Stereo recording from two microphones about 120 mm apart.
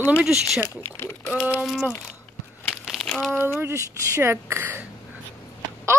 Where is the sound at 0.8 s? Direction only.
15° left (ahead or behind).